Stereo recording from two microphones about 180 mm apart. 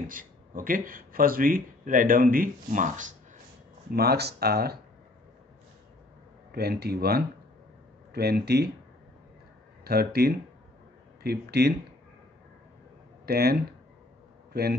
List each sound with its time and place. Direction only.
0.0 s speech: 50° right (ahead or behind)
3.9 s speech: 60° right (ahead or behind)
6.5 s speech: 60° right (ahead or behind)
9.8 s speech: 60° right (ahead or behind)
13.2 s a man's voice: 60° right (ahead or behind)